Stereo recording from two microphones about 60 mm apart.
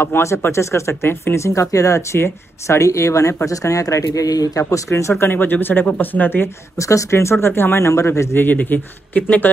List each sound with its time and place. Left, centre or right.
0.0 s speech: left
2.1 s speech: left
5.2 s speech: left
6.8 s speech: left
8.5 s speech: left